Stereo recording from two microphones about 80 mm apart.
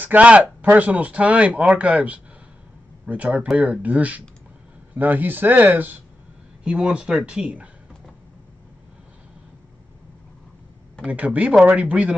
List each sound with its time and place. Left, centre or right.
0.0 s speech: centre
6.6 s speech: centre
11.1 s speech: centre